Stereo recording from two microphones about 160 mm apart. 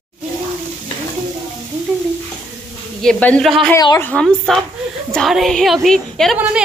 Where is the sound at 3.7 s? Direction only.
25° left (ahead or behind).